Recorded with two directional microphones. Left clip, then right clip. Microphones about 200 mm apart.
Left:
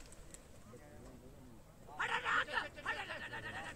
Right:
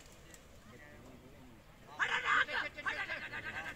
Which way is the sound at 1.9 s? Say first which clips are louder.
Right 4 dB; 35° left (ahead or behind).